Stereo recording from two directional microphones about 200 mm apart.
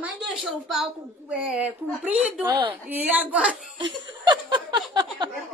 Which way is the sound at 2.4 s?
25° right (ahead or behind).